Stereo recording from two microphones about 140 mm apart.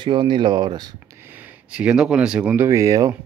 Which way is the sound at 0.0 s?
35° right (ahead or behind).